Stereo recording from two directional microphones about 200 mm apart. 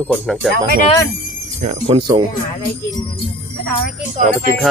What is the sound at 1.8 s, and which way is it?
Speech, 25° right (ahead or behind).